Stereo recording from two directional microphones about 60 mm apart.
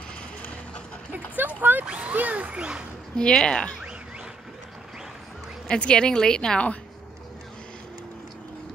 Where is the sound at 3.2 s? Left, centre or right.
Centre.